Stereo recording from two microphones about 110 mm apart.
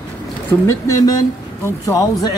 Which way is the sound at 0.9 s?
35° left (ahead or behind).